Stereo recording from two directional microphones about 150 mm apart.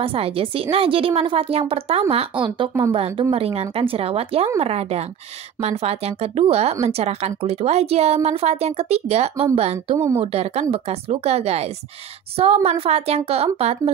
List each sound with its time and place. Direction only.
0.0 s a woman's voice: 40° right (ahead or behind)